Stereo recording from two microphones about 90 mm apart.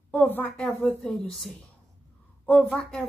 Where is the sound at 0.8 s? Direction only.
Centre (ahead or behind).